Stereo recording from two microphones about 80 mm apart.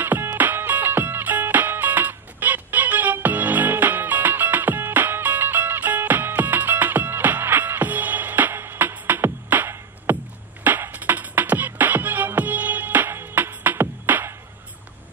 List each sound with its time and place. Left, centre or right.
0.0 s music: right